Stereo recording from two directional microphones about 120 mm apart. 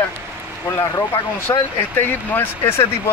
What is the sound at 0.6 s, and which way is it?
Speech, 25° left (ahead or behind).